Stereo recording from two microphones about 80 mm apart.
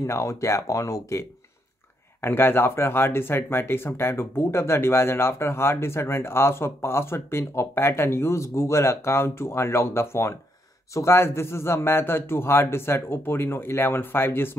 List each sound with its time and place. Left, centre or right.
0.0 s speech: left
2.2 s a man's voice: left